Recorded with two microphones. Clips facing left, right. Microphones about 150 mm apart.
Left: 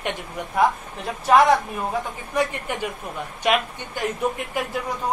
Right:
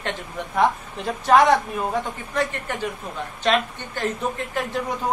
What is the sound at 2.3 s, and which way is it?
A woman's voice, 15° left (ahead or behind).